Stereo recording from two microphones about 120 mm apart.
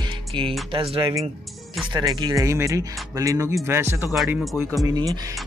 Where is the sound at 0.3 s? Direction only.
45° right (ahead or behind).